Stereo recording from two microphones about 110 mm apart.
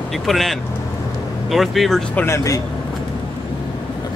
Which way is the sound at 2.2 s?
30° left (ahead or behind).